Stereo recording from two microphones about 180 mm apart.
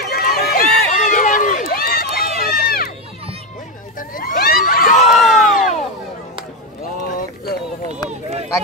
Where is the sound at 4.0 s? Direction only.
50° left (ahead or behind).